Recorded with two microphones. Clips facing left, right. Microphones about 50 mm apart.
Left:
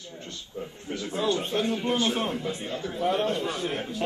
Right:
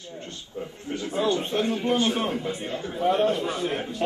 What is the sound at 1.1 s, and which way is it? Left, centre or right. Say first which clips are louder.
A man's voice: right 2 dB; centre.